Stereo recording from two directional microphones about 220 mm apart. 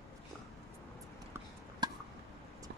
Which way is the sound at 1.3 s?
20° right (ahead or behind).